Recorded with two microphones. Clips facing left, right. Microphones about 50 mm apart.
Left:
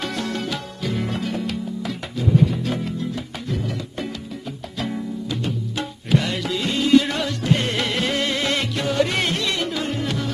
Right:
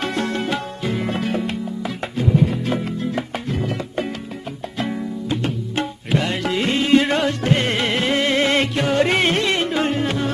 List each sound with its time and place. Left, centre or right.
0.0 s music: right
2.6 s music: right
4.7 s music: right
7.7 s music: right